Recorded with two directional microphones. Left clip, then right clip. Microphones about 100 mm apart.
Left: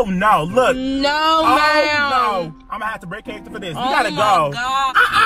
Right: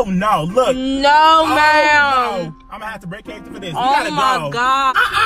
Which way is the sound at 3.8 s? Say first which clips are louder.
Right 2 dB; 20° right (ahead or behind).